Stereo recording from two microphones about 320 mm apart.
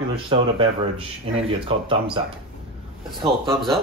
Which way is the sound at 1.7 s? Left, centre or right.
Centre.